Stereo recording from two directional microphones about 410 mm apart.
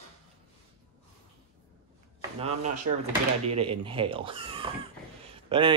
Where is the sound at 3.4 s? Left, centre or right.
Centre.